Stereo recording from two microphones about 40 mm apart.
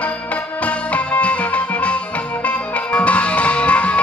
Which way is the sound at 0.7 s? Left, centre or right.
Left.